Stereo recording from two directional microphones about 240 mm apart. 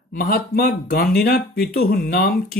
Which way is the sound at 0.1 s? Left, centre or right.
Left.